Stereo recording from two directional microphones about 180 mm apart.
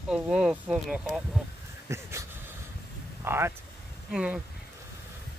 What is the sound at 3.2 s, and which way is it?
Speech, 15° right (ahead or behind).